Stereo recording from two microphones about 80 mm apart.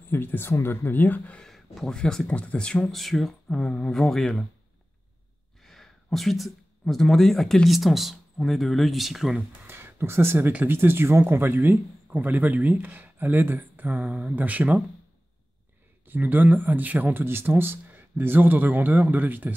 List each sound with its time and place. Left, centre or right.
0.1 s speech: left
1.4 s speech: centre
5.6 s speech: centre
9.7 s a sound: right
10.5 s speech: right
16.1 s speech: right